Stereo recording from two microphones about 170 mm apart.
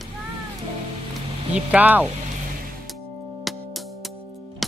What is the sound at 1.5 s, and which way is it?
Speech, 10° right (ahead or behind).